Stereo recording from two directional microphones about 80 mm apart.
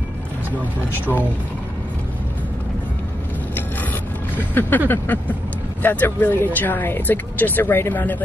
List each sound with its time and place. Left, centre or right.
4.4 s speech: left